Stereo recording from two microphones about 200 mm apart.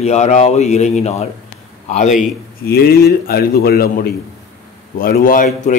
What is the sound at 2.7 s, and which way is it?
A man's voice, 50° left (ahead or behind).